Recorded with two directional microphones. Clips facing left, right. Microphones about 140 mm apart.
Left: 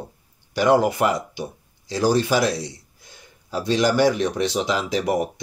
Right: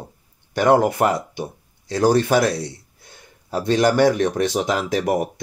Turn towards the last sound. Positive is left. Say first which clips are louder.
# right 2 dB
turn(degrees=-50)  # may be behind; listen again after turning